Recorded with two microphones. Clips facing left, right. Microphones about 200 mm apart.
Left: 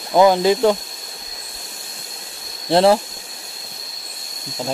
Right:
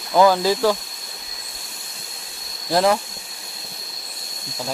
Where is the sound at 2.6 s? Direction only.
30° left (ahead or behind).